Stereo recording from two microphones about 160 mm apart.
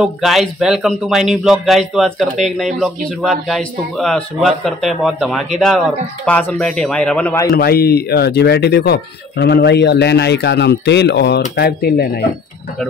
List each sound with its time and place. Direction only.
0.0 s a man's voice: centre (ahead or behind)
7.5 s speech: 75° left (ahead or behind); by 11.4 s 90° left
11.5 s speech: 80° left